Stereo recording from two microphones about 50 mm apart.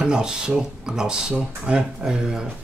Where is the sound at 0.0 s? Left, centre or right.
Centre.